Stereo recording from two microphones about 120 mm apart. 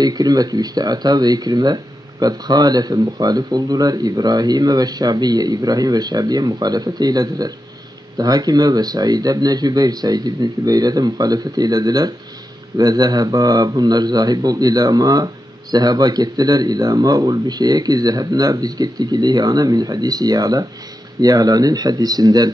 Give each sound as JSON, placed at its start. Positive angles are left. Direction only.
{"t": 0.0, "sound": "speech", "side_deg": -35}